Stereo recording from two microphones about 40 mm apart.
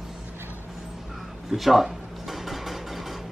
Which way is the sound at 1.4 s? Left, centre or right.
Centre.